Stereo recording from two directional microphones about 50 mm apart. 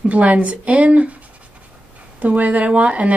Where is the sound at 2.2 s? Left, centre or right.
Right.